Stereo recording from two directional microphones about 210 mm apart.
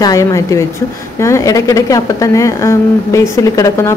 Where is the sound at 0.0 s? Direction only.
15° left (ahead or behind).